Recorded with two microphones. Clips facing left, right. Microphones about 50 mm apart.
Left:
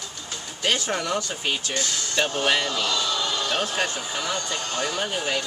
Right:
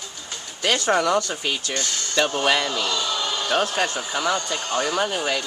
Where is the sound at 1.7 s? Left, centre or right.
Centre.